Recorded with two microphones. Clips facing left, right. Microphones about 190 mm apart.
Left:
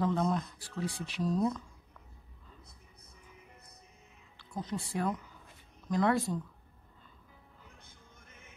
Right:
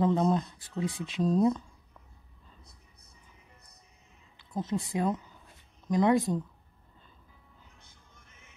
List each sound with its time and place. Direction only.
0.0 s speech: 20° right (ahead or behind)
4.4 s speech: 20° right (ahead or behind)